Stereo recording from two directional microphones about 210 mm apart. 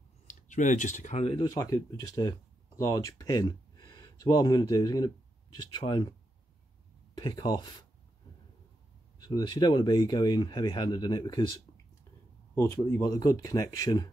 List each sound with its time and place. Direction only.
0.3 s speech: 35° left (ahead or behind); by 6.1 s 20° left (ahead or behind)
7.2 s speech: 20° left (ahead or behind)
9.2 s speech: 20° left (ahead or behind)